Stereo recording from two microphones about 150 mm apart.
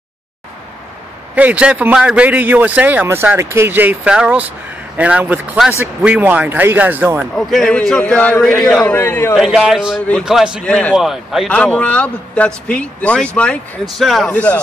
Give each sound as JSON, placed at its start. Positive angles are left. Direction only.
{"t": 1.3, "sound": "a man's voice", "side_deg": -10}
{"t": 7.3, "sound": "a man's voice", "side_deg": 0}
{"t": 8.9, "sound": "a man's voice", "side_deg": 15}
{"t": 9.4, "sound": "a man's voice", "side_deg": -5}
{"t": 10.6, "sound": "a man's voice", "side_deg": 5}